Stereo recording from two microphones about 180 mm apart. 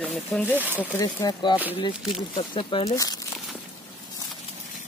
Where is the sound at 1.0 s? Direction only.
20° left (ahead or behind).